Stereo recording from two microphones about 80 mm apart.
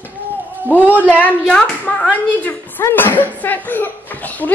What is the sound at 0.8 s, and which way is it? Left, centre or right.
Speech, centre.